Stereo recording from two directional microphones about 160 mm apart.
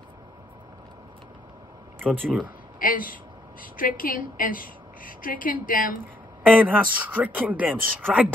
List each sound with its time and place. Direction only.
2.1 s speech: 5° left (ahead or behind)
2.8 s a woman's voice: 60° left (ahead or behind)
6.4 s speech: 10° right (ahead or behind)